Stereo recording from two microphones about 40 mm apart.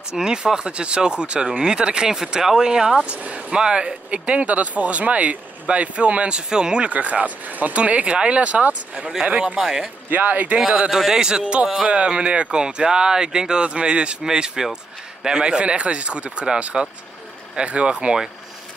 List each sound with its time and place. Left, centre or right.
0.1 s speech: centre
3.0 s speech: right
6.9 s speech: right
7.7 s speech: right
9.6 s a man's voice: centre
10.0 s speech: right
10.9 s a man's voice: centre
11.6 s a man's voice: centre
11.9 s a man's voice: right
17.6 s speech: right